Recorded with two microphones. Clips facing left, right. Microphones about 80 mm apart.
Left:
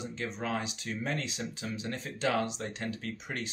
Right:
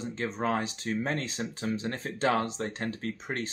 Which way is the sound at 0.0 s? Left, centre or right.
Right.